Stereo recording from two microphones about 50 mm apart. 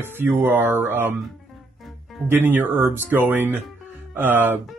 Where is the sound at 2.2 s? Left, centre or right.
Right.